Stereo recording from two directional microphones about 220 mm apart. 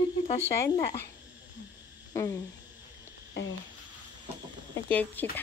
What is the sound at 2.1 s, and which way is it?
Speech, 15° left (ahead or behind).